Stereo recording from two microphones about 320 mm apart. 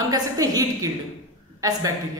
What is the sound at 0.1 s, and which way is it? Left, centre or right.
Speech, centre.